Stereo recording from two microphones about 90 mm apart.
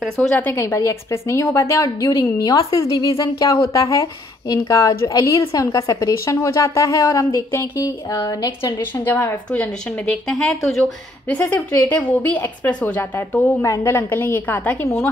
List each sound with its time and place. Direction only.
0.7 s a woman's voice: 35° left (ahead or behind)
9.0 s a woman's voice: 20° left (ahead or behind)
10.0 s speech: 5° left (ahead or behind)
11.9 s a woman's voice: 15° left (ahead or behind)
13.6 s a woman's voice: 30° left (ahead or behind)